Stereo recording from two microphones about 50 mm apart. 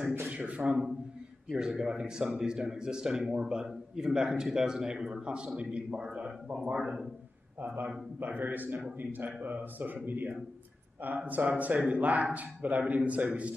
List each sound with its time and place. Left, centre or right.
0.3 s speech: right
1.5 s a man's voice: centre
7.6 s speech: right
13.2 s speech: centre